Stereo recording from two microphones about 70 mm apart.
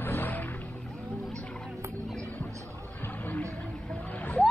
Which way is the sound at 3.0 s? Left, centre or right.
Left.